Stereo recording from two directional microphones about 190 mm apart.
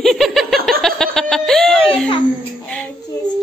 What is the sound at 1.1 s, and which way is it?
Speech, 5° left (ahead or behind).